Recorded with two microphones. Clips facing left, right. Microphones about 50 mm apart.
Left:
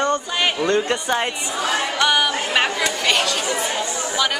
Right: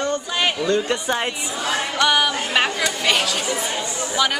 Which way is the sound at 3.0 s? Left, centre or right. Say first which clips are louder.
Even; centre.